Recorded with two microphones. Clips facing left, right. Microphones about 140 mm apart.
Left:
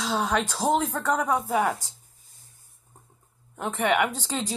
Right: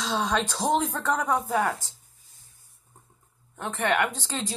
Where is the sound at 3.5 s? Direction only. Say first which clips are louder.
Left 2 dB; 10° left (ahead or behind).